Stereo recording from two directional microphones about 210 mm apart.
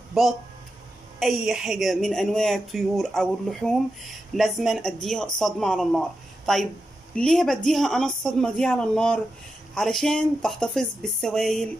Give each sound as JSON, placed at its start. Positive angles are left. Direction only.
{"t": 0.2, "sound": "speech", "side_deg": 0}